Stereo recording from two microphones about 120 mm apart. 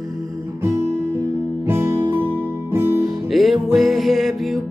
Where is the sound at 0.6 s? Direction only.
25° right (ahead or behind).